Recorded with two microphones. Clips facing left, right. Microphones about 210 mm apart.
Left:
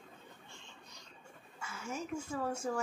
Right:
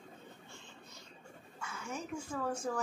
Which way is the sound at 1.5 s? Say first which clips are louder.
Left 1 dB; 5° left (ahead or behind).